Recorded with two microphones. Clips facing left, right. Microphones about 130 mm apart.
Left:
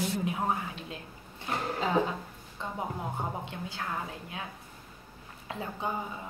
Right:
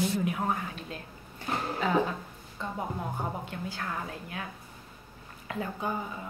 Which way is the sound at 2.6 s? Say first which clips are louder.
Right 1 dB; 20° left (ahead or behind).